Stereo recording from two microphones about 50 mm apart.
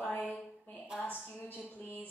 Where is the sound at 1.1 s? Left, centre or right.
Left.